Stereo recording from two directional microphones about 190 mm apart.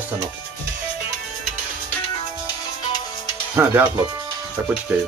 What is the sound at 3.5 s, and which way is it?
Speech, 10° right (ahead or behind).